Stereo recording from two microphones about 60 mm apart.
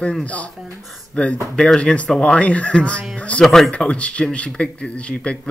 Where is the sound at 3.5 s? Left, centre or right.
Centre.